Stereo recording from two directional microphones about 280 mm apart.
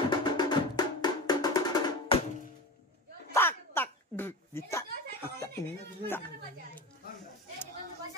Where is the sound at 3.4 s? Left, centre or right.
Centre.